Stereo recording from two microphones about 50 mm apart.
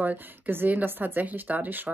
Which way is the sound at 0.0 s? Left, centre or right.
Right.